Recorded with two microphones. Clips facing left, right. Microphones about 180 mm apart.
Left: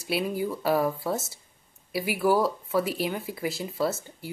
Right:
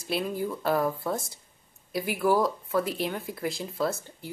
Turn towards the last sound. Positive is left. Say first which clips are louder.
# left 1 dB
turn(degrees=5)  # may be behind; listen again after turning